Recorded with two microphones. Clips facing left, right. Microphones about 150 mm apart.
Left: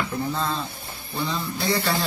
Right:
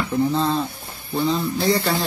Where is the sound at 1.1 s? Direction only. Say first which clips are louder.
Right 7 dB; 30° right (ahead or behind).